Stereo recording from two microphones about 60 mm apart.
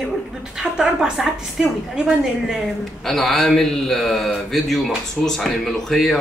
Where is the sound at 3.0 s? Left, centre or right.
Centre.